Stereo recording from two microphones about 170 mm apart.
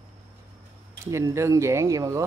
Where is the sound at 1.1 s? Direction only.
15° right (ahead or behind).